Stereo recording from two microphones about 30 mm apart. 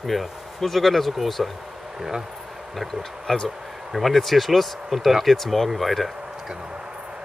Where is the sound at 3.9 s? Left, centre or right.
Centre.